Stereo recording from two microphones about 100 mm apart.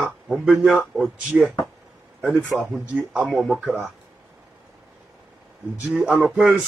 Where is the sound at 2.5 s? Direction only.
Centre (ahead or behind).